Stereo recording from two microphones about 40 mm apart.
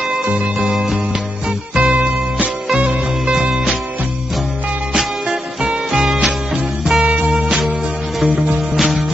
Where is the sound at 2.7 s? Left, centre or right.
Centre.